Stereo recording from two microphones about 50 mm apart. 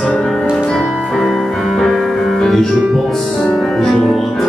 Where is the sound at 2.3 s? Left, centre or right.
Centre.